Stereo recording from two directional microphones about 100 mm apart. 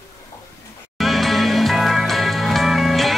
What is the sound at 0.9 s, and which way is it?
Music, centre (ahead or behind).